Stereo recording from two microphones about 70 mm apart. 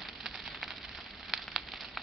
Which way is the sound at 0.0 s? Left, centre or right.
Centre.